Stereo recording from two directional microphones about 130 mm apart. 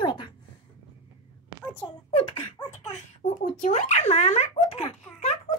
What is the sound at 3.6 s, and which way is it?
A child's voice, 65° left (ahead or behind).